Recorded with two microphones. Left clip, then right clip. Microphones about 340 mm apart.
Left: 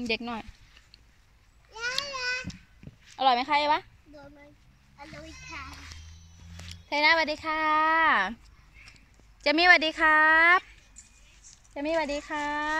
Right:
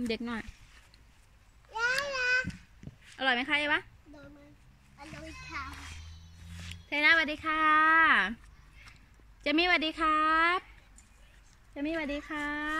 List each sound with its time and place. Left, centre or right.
0.0 s a child's voice: centre
1.7 s a sound: right
3.2 s speech: centre
4.9 s a child's voice: centre
9.4 s speech: centre
11.7 s speech: centre